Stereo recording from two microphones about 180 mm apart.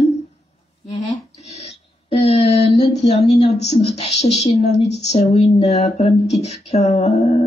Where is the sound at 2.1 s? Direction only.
35° left (ahead or behind).